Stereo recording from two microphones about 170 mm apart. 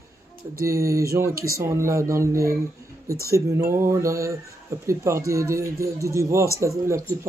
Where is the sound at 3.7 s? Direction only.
15° right (ahead or behind).